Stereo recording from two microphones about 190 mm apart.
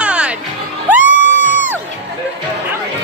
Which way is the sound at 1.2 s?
70° right (ahead or behind).